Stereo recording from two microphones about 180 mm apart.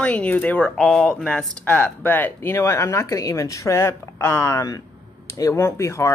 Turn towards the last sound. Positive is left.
turn(degrees=15)  # may be behind; listen again after turning